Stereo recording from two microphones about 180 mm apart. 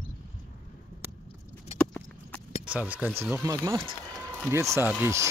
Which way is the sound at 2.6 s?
5° right (ahead or behind).